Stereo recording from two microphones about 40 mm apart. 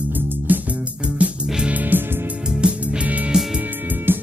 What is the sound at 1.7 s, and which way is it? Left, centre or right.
Music, right.